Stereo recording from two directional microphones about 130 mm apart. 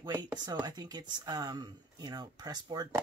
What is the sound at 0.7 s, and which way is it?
Speech, 30° right (ahead or behind).